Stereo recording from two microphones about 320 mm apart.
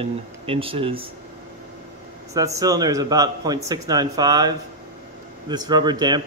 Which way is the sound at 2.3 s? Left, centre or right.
Centre.